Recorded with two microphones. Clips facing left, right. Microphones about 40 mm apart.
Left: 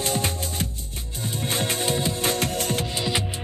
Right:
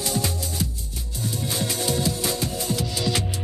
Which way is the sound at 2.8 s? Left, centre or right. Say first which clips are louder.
Even; left.